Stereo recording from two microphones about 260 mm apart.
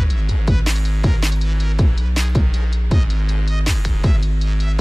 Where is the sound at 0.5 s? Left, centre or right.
Centre.